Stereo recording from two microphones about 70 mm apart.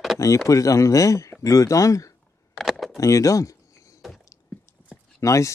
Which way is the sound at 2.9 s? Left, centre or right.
Left.